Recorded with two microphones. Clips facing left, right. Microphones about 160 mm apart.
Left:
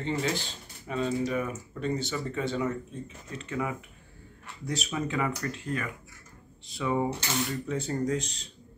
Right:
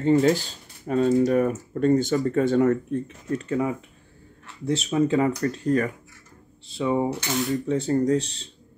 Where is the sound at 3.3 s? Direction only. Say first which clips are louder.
Right 8 dB; 35° right (ahead or behind).